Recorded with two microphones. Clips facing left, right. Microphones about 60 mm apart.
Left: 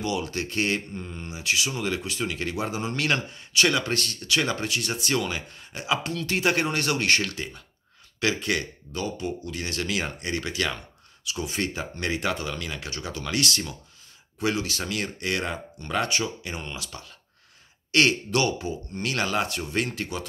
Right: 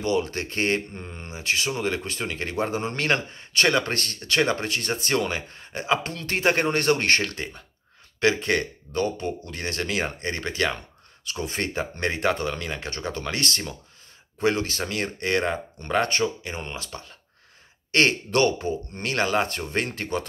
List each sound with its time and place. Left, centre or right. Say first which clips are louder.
0.0 s speech: right 4 dB; right
1.7 s speech: right 2 dB; right
8.9 s speech: right 4 dB; right
11.2 s a man's voice: even; right
14.4 s a man's voice: right 3 dB; right
19.1 s speech: right 4 dB; right
19.7 s speech: right 2 dB; right